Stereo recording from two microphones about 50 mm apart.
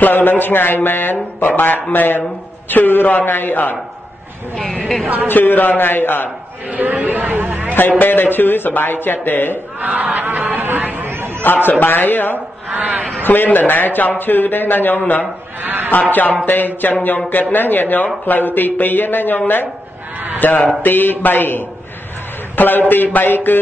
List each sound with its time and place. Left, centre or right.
0.1 s a man's voice: left
4.6 s a woman's voice: left
5.0 s speech: right
5.3 s speech: left
6.8 s speech: right
8.0 s speech: left
9.8 s speech: right
11.1 s chatter: right
11.4 s a man's voice: left
12.6 s speech: right
13.2 s a man's voice: left
15.6 s a man's voice: right
15.9 s a man's voice: left